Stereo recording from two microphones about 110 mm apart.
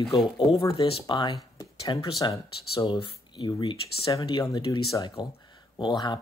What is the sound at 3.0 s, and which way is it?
Speech, 45° left (ahead or behind).